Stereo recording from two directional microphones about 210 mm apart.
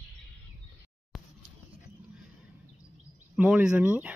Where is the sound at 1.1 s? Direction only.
Centre (ahead or behind).